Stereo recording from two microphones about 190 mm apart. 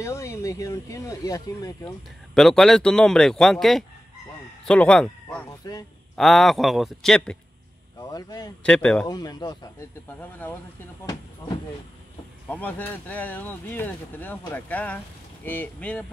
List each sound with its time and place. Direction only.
0.0 s speech: 15° left (ahead or behind)
2.3 s speech: centre (ahead or behind)
5.5 s speech: 15° left (ahead or behind)
6.1 s speech: centre (ahead or behind)
8.0 s speech: 20° left (ahead or behind)
8.6 s speech: 5° left (ahead or behind)
9.0 s speech: 20° left (ahead or behind)
10.4 s speech: 10° left (ahead or behind)
12.4 s speech: 10° left (ahead or behind)